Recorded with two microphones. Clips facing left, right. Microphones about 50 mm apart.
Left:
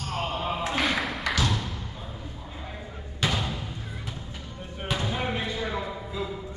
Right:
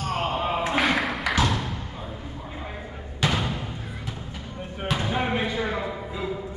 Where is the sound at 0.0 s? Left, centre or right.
Right.